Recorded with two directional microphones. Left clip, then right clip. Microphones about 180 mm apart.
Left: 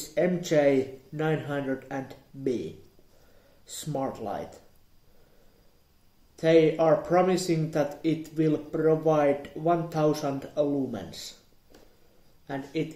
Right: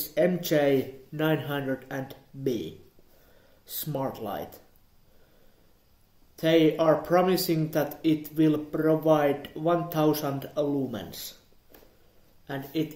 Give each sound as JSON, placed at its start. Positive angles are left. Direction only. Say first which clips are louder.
{"t": 0.1, "sound": "speech", "louder": "even", "side_deg": -20}
{"t": 6.3, "sound": "speech", "louder": "left 1 dB", "side_deg": -15}
{"t": 12.4, "sound": "speech", "louder": "even", "side_deg": -15}